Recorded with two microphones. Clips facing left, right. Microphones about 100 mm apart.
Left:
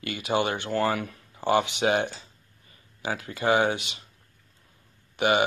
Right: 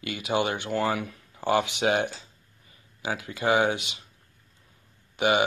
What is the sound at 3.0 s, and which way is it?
Speech, 10° right (ahead or behind).